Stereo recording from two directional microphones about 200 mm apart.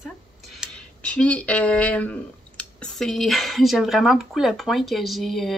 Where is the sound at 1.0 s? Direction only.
5° left (ahead or behind).